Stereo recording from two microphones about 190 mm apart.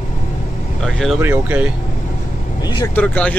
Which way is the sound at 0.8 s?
Centre (ahead or behind).